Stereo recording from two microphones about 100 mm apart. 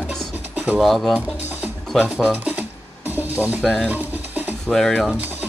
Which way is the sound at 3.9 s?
15° right (ahead or behind).